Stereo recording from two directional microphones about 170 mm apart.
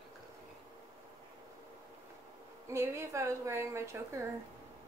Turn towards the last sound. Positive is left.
turn(degrees=-15)  # may be behind; listen again after turning